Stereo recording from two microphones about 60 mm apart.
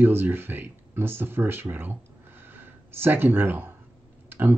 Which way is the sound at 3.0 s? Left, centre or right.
Right.